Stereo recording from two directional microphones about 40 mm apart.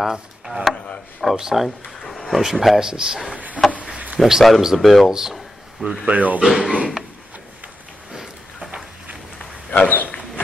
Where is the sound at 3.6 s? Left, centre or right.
Right.